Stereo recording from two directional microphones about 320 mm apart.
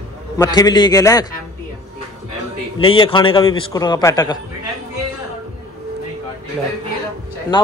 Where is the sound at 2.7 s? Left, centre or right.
Centre.